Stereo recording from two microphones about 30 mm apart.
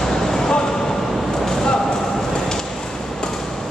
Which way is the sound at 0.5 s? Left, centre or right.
Centre.